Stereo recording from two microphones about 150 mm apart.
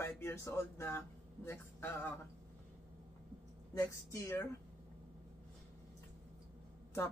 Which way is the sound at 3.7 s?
20° left (ahead or behind).